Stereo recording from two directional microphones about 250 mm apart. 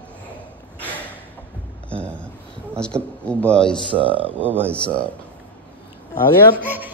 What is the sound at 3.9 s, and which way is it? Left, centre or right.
Speech, right.